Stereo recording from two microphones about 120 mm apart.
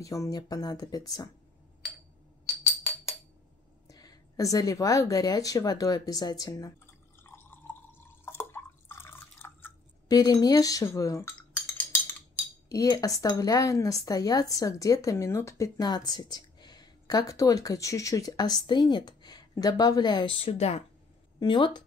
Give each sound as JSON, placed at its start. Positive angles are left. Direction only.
{"t": 0.0, "sound": "speech", "side_deg": 30}
{"t": 3.8, "sound": "speech", "side_deg": 30}
{"t": 8.3, "sound": "drip", "side_deg": 20}
{"t": 10.0, "sound": "speech", "side_deg": 35}
{"t": 12.6, "sound": "cutlery", "side_deg": 30}
{"t": 13.2, "sound": "speech", "side_deg": 30}
{"t": 20.2, "sound": "speech", "side_deg": 50}
{"t": 21.4, "sound": "speech", "side_deg": 40}